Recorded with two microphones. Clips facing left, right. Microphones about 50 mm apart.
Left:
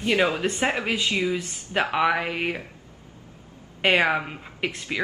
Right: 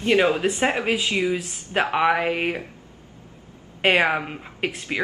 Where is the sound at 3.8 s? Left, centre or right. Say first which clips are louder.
Right 1 dB; centre.